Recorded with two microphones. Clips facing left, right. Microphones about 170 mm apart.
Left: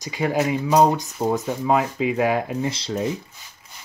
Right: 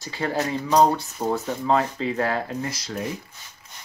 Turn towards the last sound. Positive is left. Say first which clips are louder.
# left 5 dB
turn(degrees=30)  # may be behind; listen again after turning